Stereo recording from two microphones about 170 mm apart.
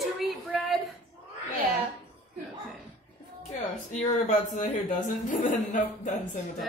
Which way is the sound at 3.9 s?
45° left (ahead or behind).